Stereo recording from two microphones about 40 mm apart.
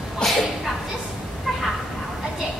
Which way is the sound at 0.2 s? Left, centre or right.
Centre.